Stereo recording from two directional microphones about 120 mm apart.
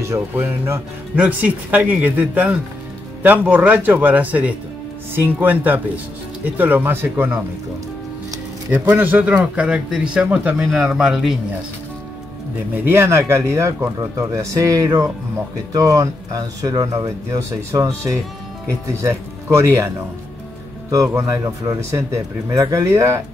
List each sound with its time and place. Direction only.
0.1 s speech: 20° right (ahead or behind)
8.6 s speech: 15° right (ahead or behind)
12.7 s speech: 20° right (ahead or behind)
20.9 s speech: 25° right (ahead or behind)